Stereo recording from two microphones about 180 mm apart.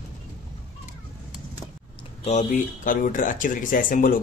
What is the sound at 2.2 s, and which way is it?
Speech, 40° left (ahead or behind).